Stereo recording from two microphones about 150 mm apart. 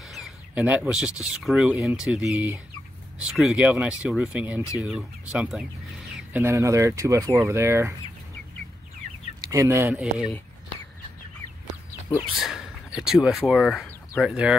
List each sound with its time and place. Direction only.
0.0 s a sound: centre (ahead or behind)
1.2 s speech: 5° right (ahead or behind)
6.4 s speech: 20° right (ahead or behind)
9.4 s speech: 20° right (ahead or behind)
12.4 s speech: centre (ahead or behind)